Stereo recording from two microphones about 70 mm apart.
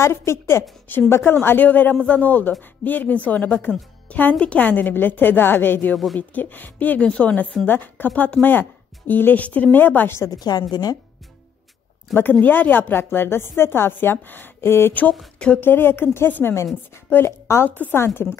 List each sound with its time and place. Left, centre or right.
0.0 s speech: left
0.8 s a woman's voice: left
10.4 s a woman's voice: left
12.1 s a woman's voice: left
15.3 s speech: centre
15.6 s a woman's voice: left